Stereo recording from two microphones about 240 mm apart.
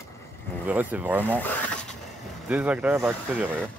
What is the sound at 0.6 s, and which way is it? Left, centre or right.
Speech, centre.